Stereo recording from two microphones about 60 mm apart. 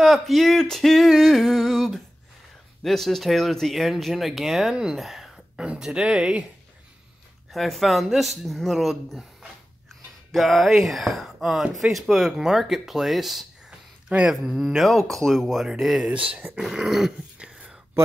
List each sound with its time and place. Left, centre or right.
0.0 s speech: centre
7.5 s speech: centre
9.4 s a sound: centre
11.8 s speech: centre
14.0 s speech: centre
14.3 s speech: centre
16.1 s speech: centre
16.6 s speech: centre
17.4 s whispering: centre